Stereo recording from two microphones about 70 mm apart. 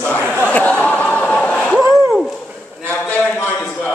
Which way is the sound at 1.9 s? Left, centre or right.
Centre.